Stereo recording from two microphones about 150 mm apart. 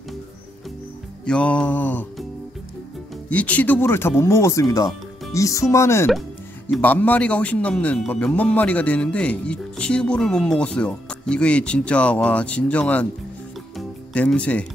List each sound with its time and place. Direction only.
1.2 s a man's voice: 5° left (ahead or behind)
3.3 s a man's voice: 10° left (ahead or behind)
13.7 s music: 10° left (ahead or behind)